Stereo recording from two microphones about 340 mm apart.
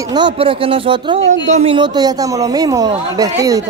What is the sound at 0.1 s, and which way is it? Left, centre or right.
Speech, centre.